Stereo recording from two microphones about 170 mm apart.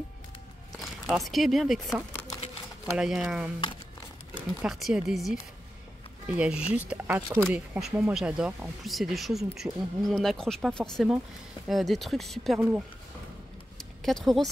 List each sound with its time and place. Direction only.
1.0 s speech: centre (ahead or behind)
4.6 s speech: centre (ahead or behind)
12.5 s speech: 10° right (ahead or behind)
13.7 s a sound: centre (ahead or behind)